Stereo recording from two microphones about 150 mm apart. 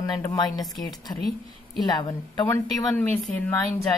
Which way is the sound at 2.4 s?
15° left (ahead or behind).